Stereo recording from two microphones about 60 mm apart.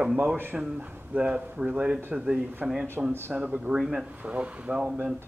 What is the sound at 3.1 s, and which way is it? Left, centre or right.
Speech, right.